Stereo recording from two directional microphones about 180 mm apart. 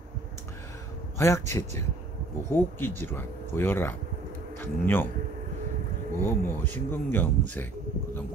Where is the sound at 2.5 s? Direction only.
10° left (ahead or behind).